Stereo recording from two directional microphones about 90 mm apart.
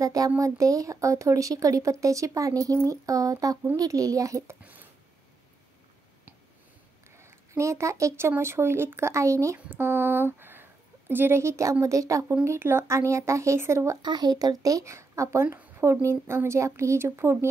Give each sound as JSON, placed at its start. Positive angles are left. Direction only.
{"t": 0.0, "sound": "speech", "side_deg": -40}
{"t": 7.2, "sound": "speech", "side_deg": -30}
{"t": 12.4, "sound": "speech", "side_deg": -25}
{"t": 14.0, "sound": "speech", "side_deg": -50}
{"t": 15.4, "sound": "a woman's voice", "side_deg": -15}
{"t": 15.8, "sound": "speech", "side_deg": -30}